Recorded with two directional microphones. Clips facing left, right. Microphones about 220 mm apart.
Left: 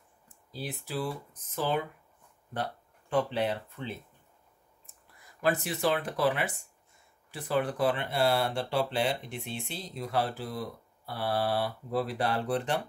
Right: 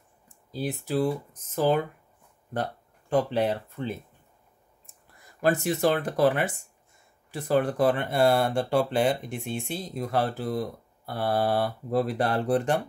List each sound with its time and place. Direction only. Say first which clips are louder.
0.5 s speech: right 8 dB; 45° right (ahead or behind)
5.4 s speech: right 5 dB; 45° right (ahead or behind)